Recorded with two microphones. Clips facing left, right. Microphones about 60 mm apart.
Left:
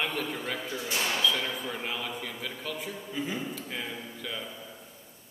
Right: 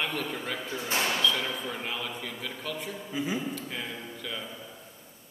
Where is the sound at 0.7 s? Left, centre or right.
Right.